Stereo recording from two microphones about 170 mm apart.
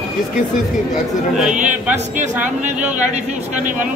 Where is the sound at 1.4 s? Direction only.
45° right (ahead or behind).